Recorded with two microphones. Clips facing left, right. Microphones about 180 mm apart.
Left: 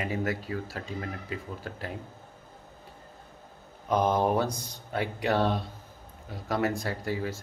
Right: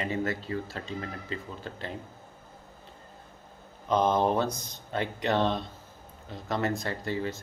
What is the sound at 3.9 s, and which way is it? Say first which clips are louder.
Speech: even; 10° left (ahead or behind).